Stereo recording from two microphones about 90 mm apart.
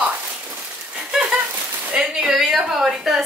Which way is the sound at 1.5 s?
20° right (ahead or behind).